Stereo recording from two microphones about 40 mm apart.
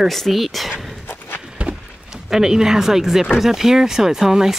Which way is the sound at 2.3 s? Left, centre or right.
Centre.